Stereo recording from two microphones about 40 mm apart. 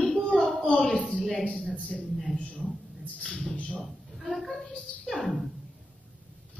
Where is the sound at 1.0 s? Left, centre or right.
Left.